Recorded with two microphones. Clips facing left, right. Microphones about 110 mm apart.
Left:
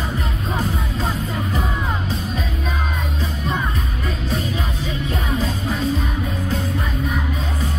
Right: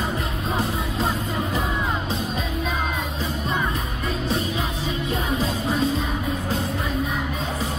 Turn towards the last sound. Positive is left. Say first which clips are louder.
# even
turn(degrees=-30)  # may be behind; listen again after turning